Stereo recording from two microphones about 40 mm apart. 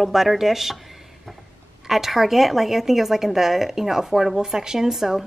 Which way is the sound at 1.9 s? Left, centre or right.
Centre.